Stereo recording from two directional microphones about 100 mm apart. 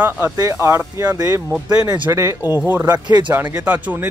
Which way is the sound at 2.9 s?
45° right (ahead or behind).